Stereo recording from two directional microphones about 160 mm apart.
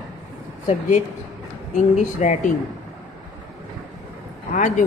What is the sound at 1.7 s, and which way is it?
Speech, 50° left (ahead or behind).